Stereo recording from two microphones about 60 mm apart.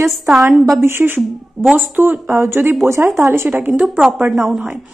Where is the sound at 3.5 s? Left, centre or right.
Right.